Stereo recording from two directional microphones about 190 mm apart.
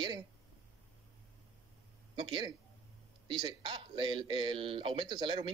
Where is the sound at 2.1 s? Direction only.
25° right (ahead or behind).